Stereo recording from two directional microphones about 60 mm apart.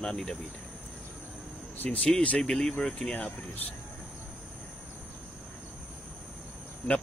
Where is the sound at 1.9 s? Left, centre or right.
Centre.